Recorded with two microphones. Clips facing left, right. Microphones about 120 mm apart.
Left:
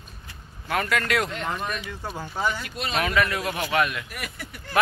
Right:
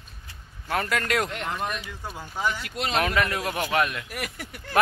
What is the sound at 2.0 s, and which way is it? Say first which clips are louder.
Speech: left 1 dB; 15° left (ahead or behind).